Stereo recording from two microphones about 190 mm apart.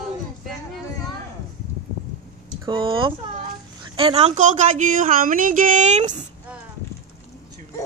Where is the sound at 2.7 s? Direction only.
25° right (ahead or behind).